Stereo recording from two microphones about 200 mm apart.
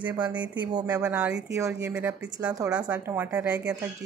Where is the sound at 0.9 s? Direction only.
10° right (ahead or behind).